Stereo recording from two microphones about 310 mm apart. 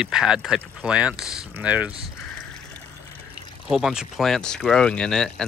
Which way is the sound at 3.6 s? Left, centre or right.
Centre.